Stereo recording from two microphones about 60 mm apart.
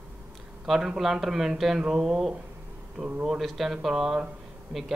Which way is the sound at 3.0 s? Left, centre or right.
Right.